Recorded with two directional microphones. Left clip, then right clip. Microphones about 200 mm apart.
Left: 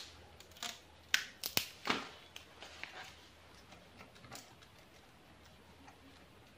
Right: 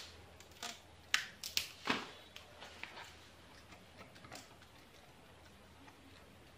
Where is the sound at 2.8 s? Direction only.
10° left (ahead or behind).